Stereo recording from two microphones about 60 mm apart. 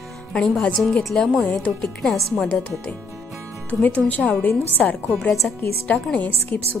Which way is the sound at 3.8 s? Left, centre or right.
Left.